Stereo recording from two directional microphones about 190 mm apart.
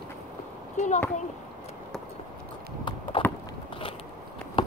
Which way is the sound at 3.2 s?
25° left (ahead or behind).